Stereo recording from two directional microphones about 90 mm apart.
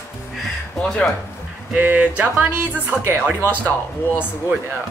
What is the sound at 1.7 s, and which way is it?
Speech, 20° right (ahead or behind).